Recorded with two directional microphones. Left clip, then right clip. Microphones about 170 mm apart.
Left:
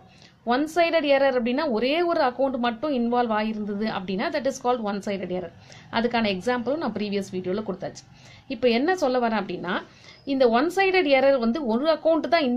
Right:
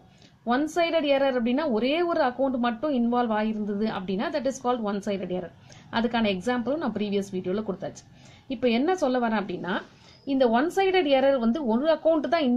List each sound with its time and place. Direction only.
0.5 s a woman's voice: centre (ahead or behind)